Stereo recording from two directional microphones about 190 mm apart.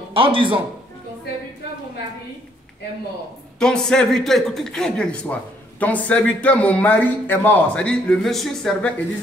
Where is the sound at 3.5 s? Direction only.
5° left (ahead or behind).